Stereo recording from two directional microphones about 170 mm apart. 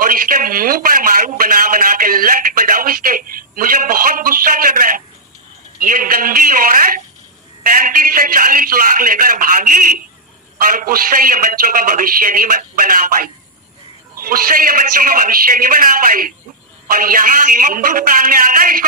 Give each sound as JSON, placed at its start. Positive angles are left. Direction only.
{"t": 0.0, "sound": "a man's voice", "side_deg": -55}